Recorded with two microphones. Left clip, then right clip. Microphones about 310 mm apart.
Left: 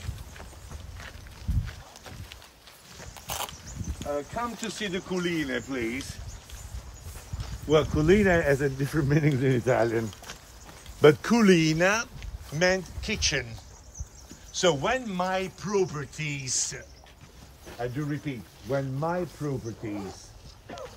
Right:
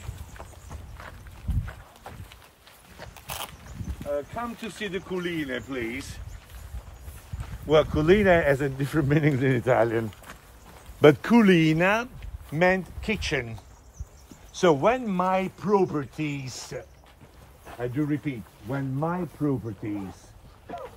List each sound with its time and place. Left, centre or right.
3.2 s a sound: left
4.0 s speech: centre
7.6 s a man's voice: centre
14.5 s a man's voice: centre
18.7 s speech: right